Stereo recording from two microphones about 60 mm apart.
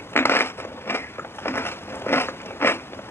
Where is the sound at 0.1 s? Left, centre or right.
Left.